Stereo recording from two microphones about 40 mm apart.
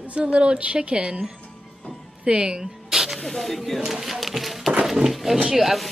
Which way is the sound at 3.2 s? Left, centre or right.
Centre.